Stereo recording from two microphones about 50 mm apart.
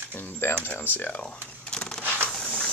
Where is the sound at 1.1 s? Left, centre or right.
Left.